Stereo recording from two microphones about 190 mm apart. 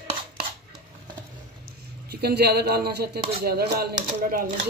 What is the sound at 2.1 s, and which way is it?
Speech, 55° right (ahead or behind).